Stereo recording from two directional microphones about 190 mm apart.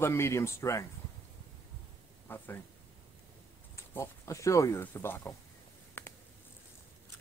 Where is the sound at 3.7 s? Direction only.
15° left (ahead or behind).